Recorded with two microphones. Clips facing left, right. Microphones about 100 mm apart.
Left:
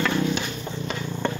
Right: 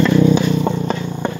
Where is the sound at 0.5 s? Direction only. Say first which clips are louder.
Right 15 dB; 90° right.